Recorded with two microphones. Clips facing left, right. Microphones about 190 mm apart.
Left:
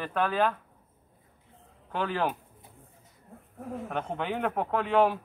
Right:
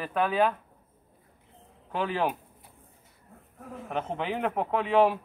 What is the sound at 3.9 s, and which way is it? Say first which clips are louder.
Speech: right 2 dB; centre (ahead or behind).